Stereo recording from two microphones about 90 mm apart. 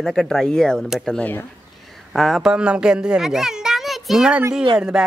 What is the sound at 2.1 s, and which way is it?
Speech, centre (ahead or behind).